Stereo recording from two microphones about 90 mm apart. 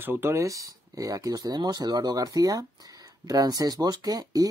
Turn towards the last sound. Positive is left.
turn(degrees=-45)  # may be behind; listen again after turning